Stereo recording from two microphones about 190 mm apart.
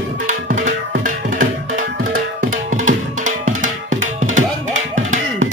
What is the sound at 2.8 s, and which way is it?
Music, 40° right (ahead or behind).